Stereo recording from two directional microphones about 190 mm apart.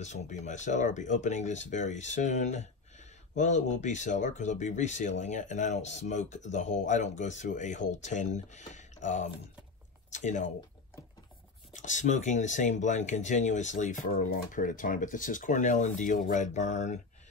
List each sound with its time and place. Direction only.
0.0 s speech: 40° left (ahead or behind)
11.7 s speech: 40° left (ahead or behind)